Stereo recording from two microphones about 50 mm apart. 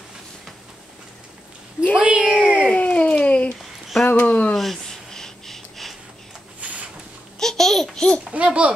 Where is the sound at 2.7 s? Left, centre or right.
Left.